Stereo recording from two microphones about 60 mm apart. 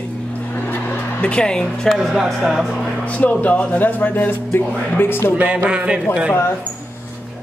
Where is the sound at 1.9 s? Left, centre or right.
Centre.